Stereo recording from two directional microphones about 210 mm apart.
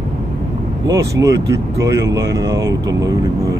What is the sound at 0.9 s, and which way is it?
Speech, 15° right (ahead or behind).